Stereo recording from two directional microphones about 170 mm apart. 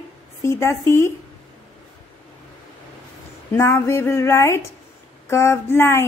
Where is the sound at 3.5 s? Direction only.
15° left (ahead or behind).